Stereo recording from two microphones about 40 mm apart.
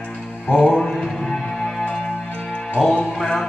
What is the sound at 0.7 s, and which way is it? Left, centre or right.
Music, centre.